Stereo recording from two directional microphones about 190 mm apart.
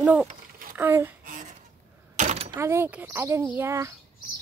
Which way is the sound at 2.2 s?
40° right (ahead or behind).